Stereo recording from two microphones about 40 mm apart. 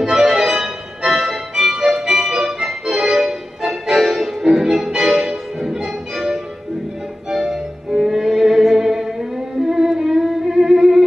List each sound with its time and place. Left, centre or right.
0.0 s music: centre